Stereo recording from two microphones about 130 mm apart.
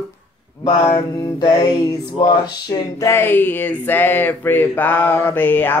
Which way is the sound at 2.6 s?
30° left (ahead or behind).